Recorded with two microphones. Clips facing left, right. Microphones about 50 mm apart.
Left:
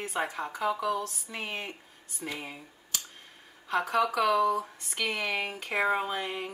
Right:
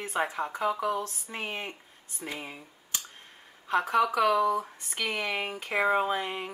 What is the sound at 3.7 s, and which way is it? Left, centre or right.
Speech, centre.